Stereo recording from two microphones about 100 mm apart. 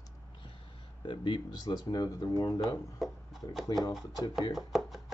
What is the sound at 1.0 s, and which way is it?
Speech, 55° left (ahead or behind).